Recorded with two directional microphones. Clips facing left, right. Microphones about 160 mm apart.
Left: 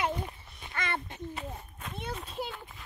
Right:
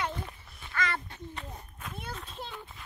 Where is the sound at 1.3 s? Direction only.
5° left (ahead or behind).